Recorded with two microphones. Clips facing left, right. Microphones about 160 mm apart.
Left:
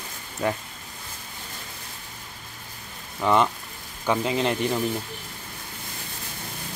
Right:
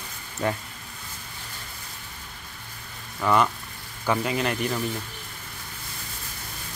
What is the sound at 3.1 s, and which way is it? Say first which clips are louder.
Speech: left 1 dB; 15° left (ahead or behind).